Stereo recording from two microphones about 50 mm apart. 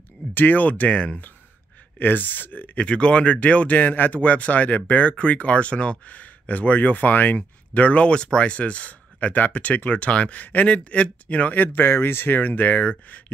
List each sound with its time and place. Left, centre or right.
0.3 s speech: left
2.0 s speech: left
2.8 s speech: left
10.4 s speech: left
10.7 s speech: left